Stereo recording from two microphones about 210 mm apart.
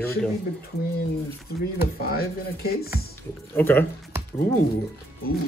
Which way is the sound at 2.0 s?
45° left (ahead or behind).